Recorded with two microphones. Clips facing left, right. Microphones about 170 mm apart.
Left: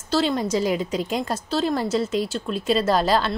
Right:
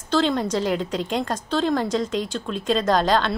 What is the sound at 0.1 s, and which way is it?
A woman's voice, 5° left (ahead or behind).